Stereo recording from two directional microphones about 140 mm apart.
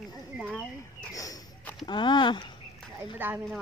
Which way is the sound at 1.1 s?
25° left (ahead or behind).